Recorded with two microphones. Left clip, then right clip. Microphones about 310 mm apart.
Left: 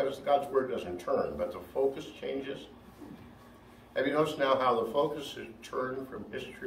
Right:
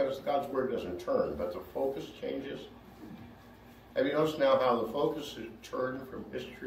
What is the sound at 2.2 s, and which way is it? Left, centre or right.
Speech, centre.